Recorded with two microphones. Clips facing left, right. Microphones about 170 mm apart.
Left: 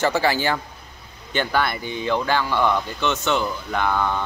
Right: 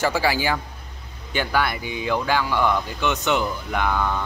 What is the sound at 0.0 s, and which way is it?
A man's voice, 10° right (ahead or behind).